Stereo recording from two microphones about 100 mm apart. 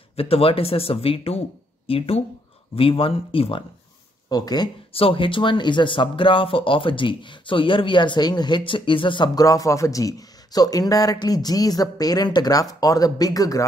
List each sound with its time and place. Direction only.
0.1 s speech: 75° left (ahead or behind)
4.3 s speech: 40° left (ahead or behind)
4.9 s speech: 65° left (ahead or behind); by 13.7 s 35° left (ahead or behind)